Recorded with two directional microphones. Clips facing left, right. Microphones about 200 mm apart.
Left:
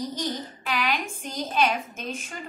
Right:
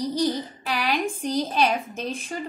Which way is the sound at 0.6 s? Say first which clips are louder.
Right 2 dB; 35° right (ahead or behind).